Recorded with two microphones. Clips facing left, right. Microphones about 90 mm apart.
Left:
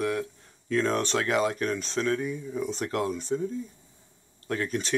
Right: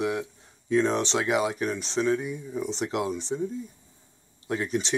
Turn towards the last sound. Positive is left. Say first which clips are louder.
# right 1 dB
turn(degrees=-20)  # may be behind; listen again after turning